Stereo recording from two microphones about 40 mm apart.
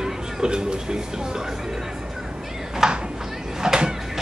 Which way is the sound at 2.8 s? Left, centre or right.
Centre.